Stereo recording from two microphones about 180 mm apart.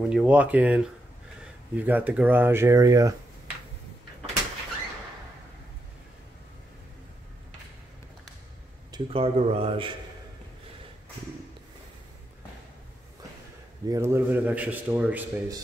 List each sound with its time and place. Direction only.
0.1 s speech: 5° right (ahead or behind)
8.9 s a man's voice: 30° right (ahead or behind)
13.8 s speech: 15° right (ahead or behind)